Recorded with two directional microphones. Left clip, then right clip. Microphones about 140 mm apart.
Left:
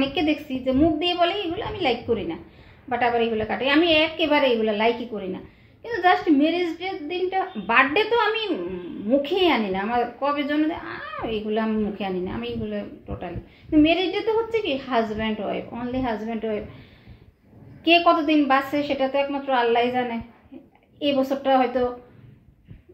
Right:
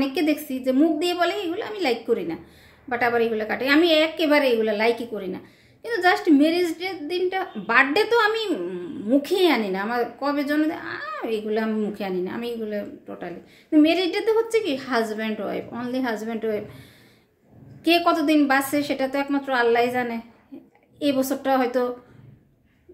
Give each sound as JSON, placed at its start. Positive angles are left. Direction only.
{"t": 0.1, "sound": "a woman's voice", "side_deg": -30}
{"t": 17.8, "sound": "speech", "side_deg": -30}